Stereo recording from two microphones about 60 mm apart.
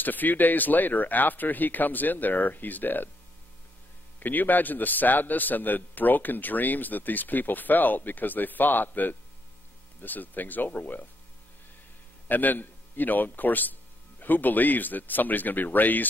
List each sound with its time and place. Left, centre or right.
0.0 s a man's voice: left
4.2 s a man's voice: left
12.3 s a man's voice: left